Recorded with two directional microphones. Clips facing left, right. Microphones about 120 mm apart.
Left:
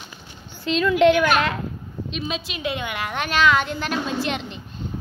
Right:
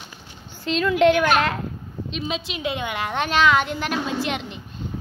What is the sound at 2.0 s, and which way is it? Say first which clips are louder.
A woman's voice: right 1 dB; 25° right (ahead or behind).